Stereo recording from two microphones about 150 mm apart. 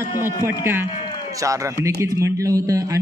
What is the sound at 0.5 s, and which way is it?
A man's voice, 15° right (ahead or behind).